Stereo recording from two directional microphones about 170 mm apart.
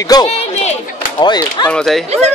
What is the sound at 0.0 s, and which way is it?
Speech, 25° left (ahead or behind).